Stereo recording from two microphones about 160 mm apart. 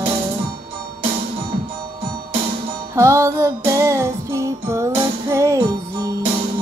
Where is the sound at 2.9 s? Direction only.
15° right (ahead or behind).